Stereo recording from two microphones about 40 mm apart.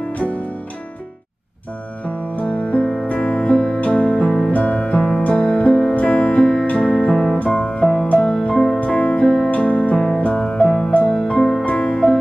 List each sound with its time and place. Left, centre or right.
2.0 s music: left
4.5 s music: left
4.7 s music: left
5.9 s music: left
6.3 s music: left
7.1 s music: centre
7.4 s music: left
9.9 s music: left
10.9 s music: left
11.3 s music: centre
11.6 s music: left